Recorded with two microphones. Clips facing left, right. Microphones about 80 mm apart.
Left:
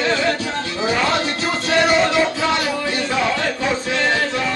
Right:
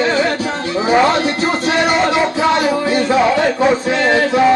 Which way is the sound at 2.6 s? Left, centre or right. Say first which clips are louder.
Right 7 dB; centre.